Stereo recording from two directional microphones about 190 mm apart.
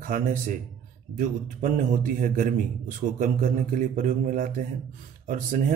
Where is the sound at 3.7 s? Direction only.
40° right (ahead or behind).